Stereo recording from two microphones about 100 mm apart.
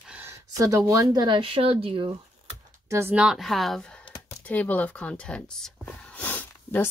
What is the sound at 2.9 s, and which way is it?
Speech, 25° right (ahead or behind).